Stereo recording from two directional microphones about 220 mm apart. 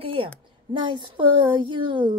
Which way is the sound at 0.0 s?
25° right (ahead or behind).